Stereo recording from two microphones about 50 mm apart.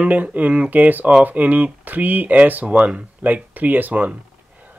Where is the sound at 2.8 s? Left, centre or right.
Centre.